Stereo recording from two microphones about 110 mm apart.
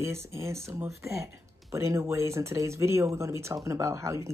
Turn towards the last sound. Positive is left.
turn(degrees=-25)  # may be behind; listen again after turning